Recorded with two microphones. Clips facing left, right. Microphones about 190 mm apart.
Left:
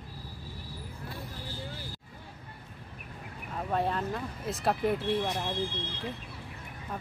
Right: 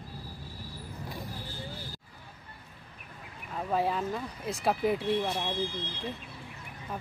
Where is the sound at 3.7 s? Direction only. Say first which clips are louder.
Right 1 dB; 5° right (ahead or behind).